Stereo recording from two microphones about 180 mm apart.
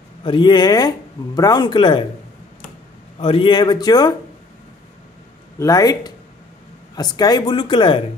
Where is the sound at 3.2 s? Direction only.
30° left (ahead or behind).